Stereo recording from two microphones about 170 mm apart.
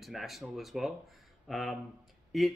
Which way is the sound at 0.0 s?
Centre (ahead or behind).